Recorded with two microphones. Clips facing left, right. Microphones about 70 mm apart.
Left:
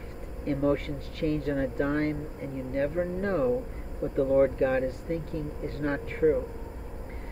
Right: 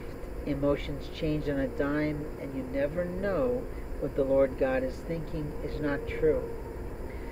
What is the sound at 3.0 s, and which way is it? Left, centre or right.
Speech, centre.